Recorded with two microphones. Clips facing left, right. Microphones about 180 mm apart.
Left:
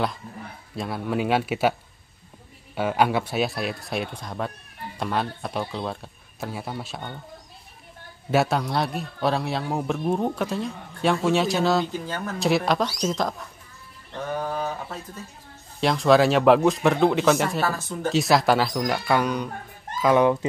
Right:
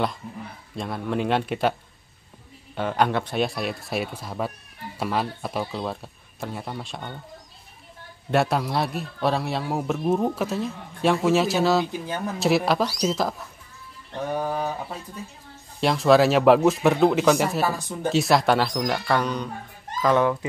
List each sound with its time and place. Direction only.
0.7 s a man's voice: 5° left (ahead or behind)
8.3 s a man's voice: centre (ahead or behind)
11.9 s speech: 15° right (ahead or behind)
12.4 s a man's voice: centre (ahead or behind)
15.8 s a man's voice: centre (ahead or behind)
17.6 s speech: 15° right (ahead or behind)
18.1 s a man's voice: centre (ahead or behind)